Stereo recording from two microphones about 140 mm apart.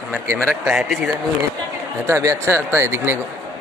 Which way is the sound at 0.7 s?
5° right (ahead or behind).